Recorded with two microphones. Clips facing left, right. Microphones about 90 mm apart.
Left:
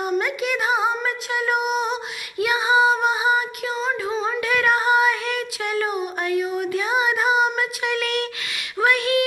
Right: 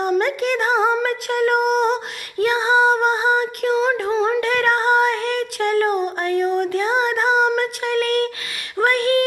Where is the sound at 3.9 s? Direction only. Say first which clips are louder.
Right 5 dB; 55° right (ahead or behind).